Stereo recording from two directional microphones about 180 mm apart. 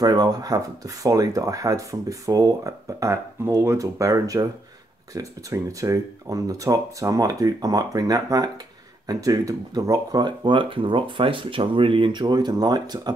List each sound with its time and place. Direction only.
0.0 s speech: 20° right (ahead or behind)